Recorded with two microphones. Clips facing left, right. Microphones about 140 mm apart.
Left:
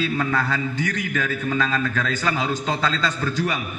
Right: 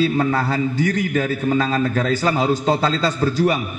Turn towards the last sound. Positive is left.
turn(degrees=-35)  # may be behind; listen again after turning